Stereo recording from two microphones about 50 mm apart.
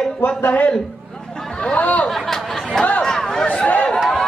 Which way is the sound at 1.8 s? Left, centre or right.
Left.